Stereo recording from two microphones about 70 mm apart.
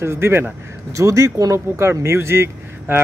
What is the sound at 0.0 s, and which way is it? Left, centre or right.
Speech, right.